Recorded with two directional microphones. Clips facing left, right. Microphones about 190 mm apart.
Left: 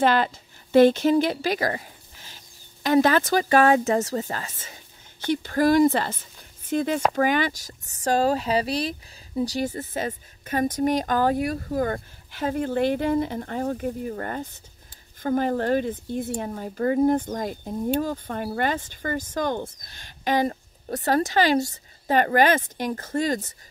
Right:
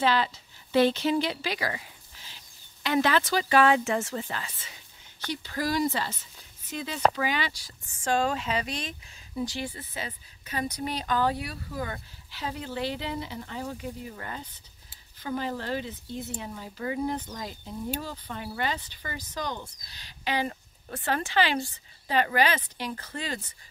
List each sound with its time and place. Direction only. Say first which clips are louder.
0.0 s speech: left 5 dB; 50° left (ahead or behind)